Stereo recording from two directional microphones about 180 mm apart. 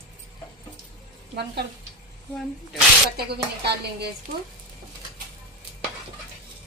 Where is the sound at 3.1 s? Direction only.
65° right (ahead or behind).